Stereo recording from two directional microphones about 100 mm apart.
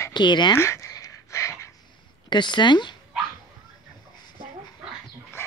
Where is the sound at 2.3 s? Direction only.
50° left (ahead or behind).